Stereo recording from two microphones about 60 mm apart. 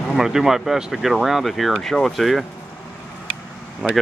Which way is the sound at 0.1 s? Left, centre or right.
Centre.